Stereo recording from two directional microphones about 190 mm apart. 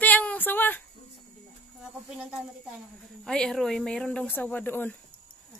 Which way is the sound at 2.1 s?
5° right (ahead or behind).